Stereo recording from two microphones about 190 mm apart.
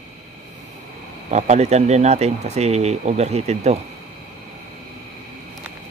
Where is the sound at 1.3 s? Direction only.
35° right (ahead or behind).